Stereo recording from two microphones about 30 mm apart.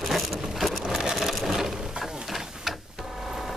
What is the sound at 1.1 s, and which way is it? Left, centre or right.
Sewing machine, centre.